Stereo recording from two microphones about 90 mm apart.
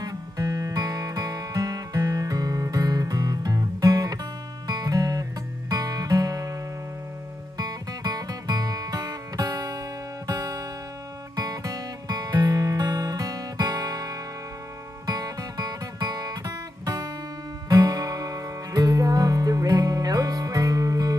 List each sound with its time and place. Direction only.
0.0 s music: 45° right (ahead or behind)
15.0 s guitar: 40° right (ahead or behind)
17.6 s music: 45° right (ahead or behind)